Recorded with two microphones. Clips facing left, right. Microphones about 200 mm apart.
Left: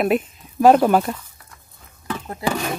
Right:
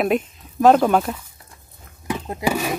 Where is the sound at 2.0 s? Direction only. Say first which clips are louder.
Right 2 dB; 15° right (ahead or behind).